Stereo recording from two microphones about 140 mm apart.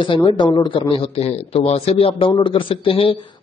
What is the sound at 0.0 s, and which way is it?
A man's voice, 35° left (ahead or behind).